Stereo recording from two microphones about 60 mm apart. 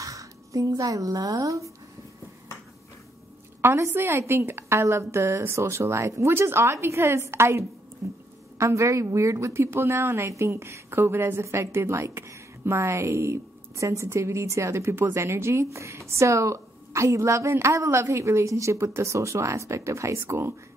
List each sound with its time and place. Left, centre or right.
0.0 s speech: right
3.6 s a woman's voice: right
6.3 s a woman's voice: right